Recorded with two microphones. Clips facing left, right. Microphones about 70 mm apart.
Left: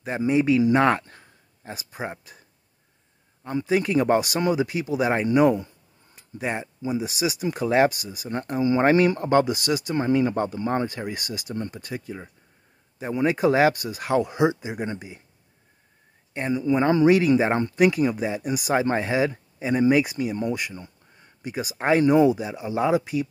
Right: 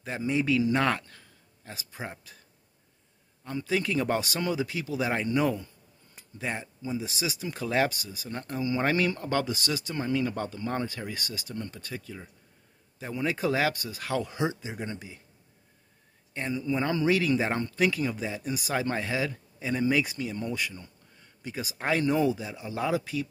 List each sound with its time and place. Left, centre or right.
0.0 s speech: left
1.7 s speech: centre
3.4 s speech: left
7.4 s speech: left
8.0 s speech: centre
8.3 s speech: left
9.9 s speech: left
16.3 s speech: left
20.7 s a sound: left
21.4 s speech: centre